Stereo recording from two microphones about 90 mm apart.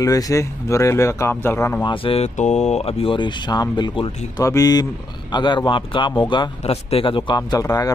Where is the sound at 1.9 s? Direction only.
90° left; by 4.1 s 65° left (ahead or behind).